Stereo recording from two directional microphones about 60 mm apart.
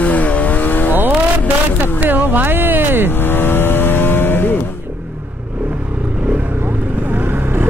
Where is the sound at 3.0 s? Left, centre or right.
Left.